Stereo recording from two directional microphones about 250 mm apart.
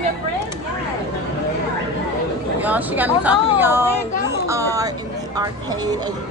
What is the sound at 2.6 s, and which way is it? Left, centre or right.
A woman's voice, centre.